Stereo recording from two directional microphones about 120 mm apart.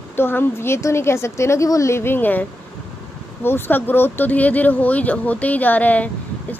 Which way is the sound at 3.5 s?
20° left (ahead or behind).